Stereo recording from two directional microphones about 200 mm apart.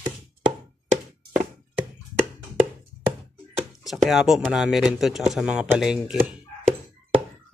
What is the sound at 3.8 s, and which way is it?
Speech, centre (ahead or behind).